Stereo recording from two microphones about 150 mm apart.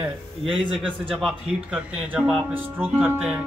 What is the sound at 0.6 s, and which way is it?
Speech, 35° right (ahead or behind).